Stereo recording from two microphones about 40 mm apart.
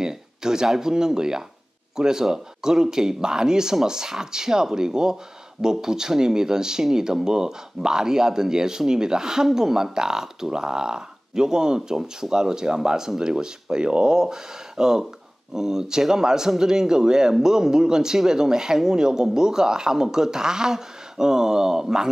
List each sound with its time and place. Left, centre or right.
0.0 s speech: centre